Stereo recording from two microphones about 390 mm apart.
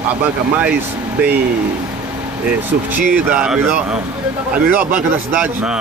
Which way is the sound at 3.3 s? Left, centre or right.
Centre.